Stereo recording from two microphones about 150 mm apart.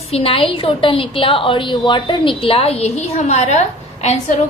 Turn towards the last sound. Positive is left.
turn(degrees=45)  # may be behind; listen again after turning